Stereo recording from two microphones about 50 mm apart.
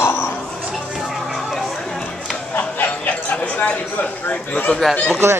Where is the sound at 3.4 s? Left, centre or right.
Left.